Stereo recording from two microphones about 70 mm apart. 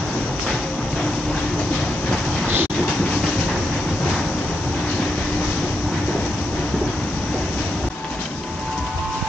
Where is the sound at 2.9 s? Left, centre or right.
Centre.